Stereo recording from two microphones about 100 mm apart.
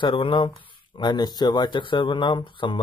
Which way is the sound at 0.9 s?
45° left (ahead or behind).